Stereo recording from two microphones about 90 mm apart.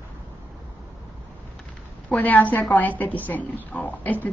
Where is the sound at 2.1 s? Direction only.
20° left (ahead or behind).